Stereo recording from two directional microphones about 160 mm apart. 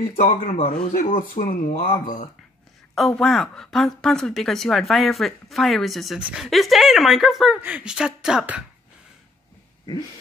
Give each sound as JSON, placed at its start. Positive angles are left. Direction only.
{"t": 0.1, "sound": "speech", "side_deg": 40}
{"t": 1.5, "sound": "speech", "side_deg": 55}
{"t": 2.9, "sound": "speech", "side_deg": 5}